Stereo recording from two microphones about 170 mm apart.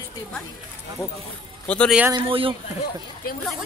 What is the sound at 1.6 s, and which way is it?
Speech, 10° left (ahead or behind).